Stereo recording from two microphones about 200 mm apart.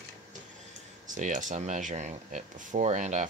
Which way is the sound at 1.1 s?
40° right (ahead or behind).